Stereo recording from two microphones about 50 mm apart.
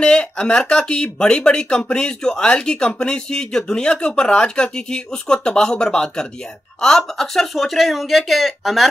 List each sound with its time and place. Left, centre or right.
0.0 s speech: centre
7.5 s speech: centre